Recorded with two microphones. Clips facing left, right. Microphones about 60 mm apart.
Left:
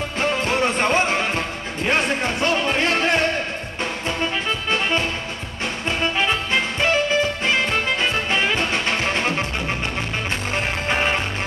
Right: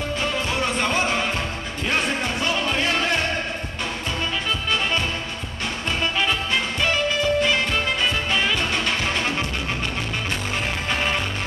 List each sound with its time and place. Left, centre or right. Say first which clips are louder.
0.6 s music: left 3 dB; left
4.6 s music: left 2 dB; left
10.9 s music: left 4 dB; left